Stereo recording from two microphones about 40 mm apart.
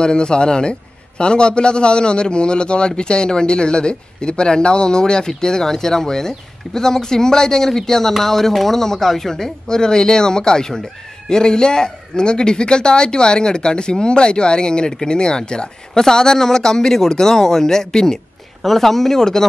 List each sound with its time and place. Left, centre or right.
0.0 s speech: left